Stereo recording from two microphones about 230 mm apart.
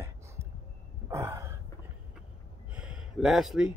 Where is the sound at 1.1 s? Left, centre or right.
Centre.